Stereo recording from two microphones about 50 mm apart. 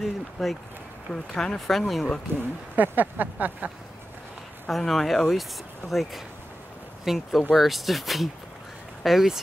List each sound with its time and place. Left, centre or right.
0.0 s speech: centre
1.1 s speech: centre
1.7 s speech: centre
2.3 s speech: right
2.7 s a sound: right
4.6 s speech: centre